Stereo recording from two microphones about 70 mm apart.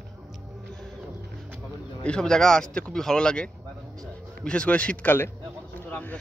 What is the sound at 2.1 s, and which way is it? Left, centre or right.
A man's voice, centre.